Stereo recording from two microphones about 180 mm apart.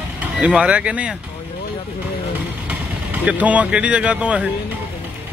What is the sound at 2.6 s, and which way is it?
Speech, 10° right (ahead or behind).